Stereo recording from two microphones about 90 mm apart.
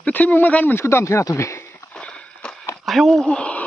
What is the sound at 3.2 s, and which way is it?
Speech, 15° left (ahead or behind).